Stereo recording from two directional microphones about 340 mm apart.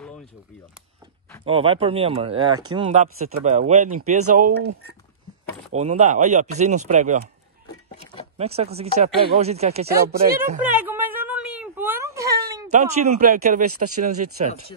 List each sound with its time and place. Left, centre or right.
1.4 s speech: centre
5.8 s speech: centre
8.4 s speech: centre
10.6 s a sound: centre
13.0 s speech: right
13.7 s speech: right